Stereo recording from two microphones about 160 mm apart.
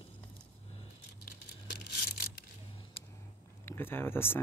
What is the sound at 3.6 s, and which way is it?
Speech, 15° left (ahead or behind).